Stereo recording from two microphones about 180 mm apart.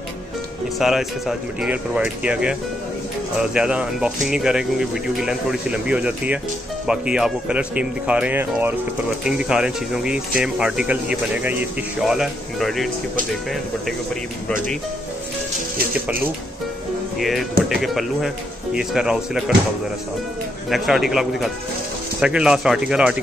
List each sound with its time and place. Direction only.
0.7 s speech: centre (ahead or behind)
3.5 s speech: 5° right (ahead or behind)
17.2 s speech: centre (ahead or behind)
20.7 s speech: centre (ahead or behind)